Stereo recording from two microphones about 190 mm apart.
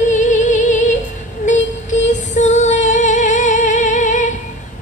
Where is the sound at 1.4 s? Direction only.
40° left (ahead or behind).